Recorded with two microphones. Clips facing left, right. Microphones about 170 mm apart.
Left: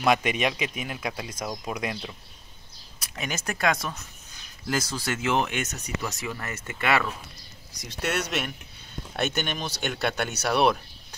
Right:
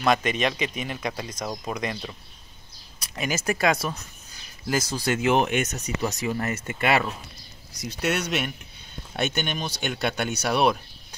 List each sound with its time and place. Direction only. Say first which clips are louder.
0.0 s speech: right 1 dB; 10° left (ahead or behind); by 7.1 s 25° right (ahead or behind)
8.0 s speech: right 2 dB; centre (ahead or behind)